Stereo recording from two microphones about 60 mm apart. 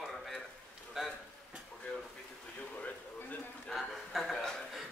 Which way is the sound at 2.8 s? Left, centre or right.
Left.